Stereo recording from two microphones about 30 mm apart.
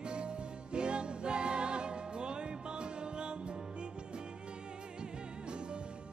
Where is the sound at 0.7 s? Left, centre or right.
Right.